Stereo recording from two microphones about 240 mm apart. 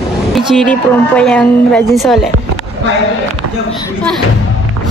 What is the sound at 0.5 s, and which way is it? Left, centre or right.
A woman's voice, centre.